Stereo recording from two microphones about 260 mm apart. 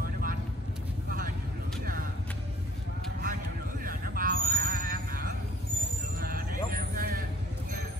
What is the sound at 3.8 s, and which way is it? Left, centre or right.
Vehicle, right.